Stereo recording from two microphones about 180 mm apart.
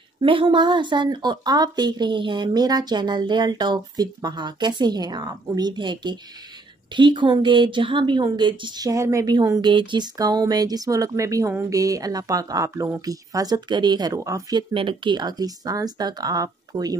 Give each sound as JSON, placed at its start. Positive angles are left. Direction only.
{"t": 0.2, "sound": "a woman's voice", "side_deg": -30}